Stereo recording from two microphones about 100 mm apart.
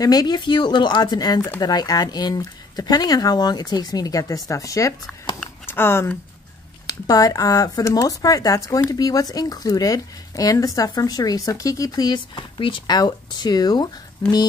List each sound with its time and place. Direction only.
0.0 s speech: 40° left (ahead or behind)
5.7 s speech: 25° left (ahead or behind)
6.9 s speech: 35° left (ahead or behind)